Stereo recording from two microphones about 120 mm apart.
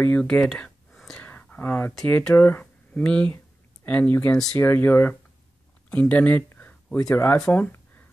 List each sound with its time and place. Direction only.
0.0 s speech: 10° left (ahead or behind)
1.2 s a sound: 15° left (ahead or behind)
2.0 s speech: 10° left (ahead or behind)
4.6 s speech: 15° left (ahead or behind)
5.9 s a sound: 10° left (ahead or behind)
7.0 s speech: 30° left (ahead or behind)
7.2 s speech: 10° left (ahead or behind)